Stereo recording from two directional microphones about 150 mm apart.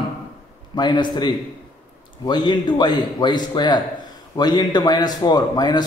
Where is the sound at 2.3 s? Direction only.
30° left (ahead or behind).